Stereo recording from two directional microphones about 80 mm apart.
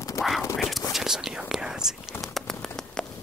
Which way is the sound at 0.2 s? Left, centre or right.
Left.